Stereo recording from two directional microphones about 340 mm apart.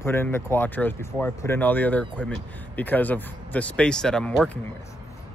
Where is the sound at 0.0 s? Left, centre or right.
Centre.